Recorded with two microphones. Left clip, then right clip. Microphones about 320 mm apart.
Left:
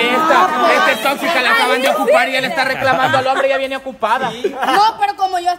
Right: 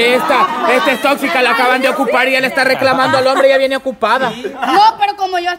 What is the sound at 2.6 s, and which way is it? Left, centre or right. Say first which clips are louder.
A man's voice: right 3 dB; right.